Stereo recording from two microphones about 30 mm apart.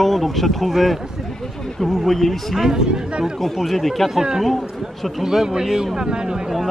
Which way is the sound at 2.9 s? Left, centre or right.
Right.